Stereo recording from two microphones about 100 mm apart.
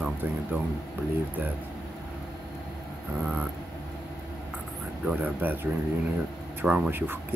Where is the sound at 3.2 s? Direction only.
10° right (ahead or behind).